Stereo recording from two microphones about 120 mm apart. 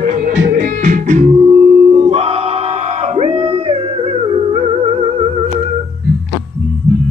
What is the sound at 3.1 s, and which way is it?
Music, 55° right (ahead or behind).